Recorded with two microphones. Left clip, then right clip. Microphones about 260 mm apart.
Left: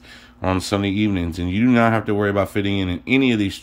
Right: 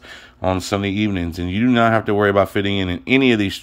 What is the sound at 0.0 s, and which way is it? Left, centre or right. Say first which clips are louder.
Speech: right 3 dB; centre.